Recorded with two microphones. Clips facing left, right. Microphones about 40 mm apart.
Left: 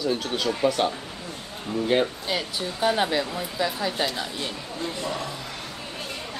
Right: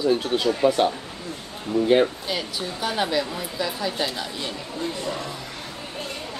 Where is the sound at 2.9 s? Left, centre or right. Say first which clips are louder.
Even; centre.